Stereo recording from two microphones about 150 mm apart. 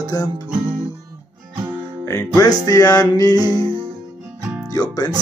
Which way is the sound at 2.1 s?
20° left (ahead or behind).